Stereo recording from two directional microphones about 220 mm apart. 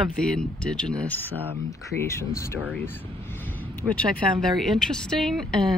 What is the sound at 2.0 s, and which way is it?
Speech, 15° left (ahead or behind).